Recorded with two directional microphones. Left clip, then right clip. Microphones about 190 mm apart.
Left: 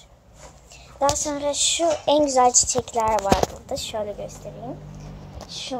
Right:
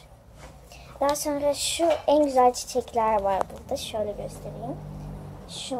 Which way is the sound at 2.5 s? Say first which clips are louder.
Left 6 dB; 25° right (ahead or behind).